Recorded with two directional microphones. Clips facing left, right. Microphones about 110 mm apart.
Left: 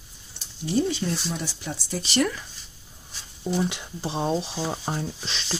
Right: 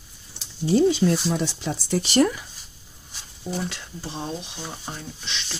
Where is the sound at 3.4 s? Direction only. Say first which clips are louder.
Left 4 dB; 15° left (ahead or behind).